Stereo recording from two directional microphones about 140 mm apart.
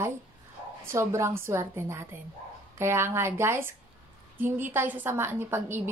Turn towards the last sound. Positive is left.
turn(degrees=-15)  # may be behind; listen again after turning